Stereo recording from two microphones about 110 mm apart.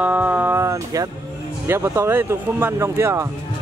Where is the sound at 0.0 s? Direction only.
15° right (ahead or behind).